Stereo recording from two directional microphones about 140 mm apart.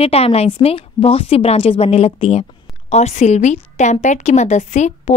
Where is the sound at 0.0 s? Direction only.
45° left (ahead or behind).